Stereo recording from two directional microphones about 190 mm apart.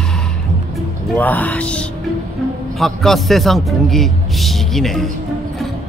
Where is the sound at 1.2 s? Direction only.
10° left (ahead or behind).